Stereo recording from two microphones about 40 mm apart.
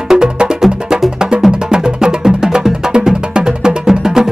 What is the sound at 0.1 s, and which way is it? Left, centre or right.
Music, centre.